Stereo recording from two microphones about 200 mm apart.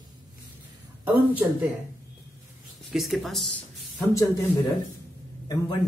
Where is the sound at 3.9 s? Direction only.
15° left (ahead or behind).